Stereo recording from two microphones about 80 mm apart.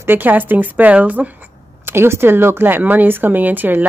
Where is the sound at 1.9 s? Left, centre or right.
Right.